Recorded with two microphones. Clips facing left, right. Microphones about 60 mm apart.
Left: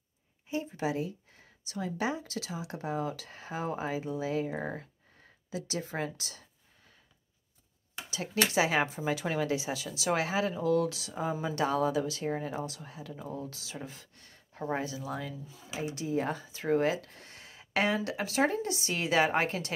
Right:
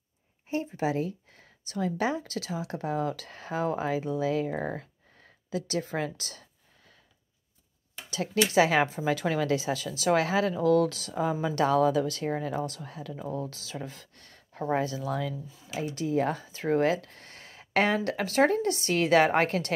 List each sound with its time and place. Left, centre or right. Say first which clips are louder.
0.5 s speech: right 4 dB; right
1.0 s speech: right 4 dB; right
4.5 s speech: right 4 dB; right
5.5 s speech: right 5 dB; right
8.5 s speech: right 6 dB; right
10.3 s speech: right 5 dB; right
15.9 s speech: right 5 dB; right